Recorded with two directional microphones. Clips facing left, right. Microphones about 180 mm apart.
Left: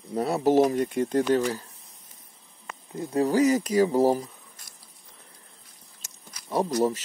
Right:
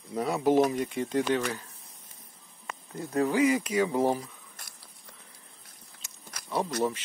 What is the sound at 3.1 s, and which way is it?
Speech, 40° left (ahead or behind).